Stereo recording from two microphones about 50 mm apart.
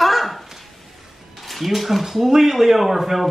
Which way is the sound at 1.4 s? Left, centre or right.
Centre.